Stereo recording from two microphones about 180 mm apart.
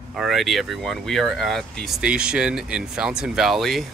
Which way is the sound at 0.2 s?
Centre (ahead or behind).